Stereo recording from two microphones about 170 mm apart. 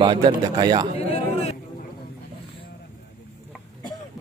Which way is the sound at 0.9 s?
35° left (ahead or behind).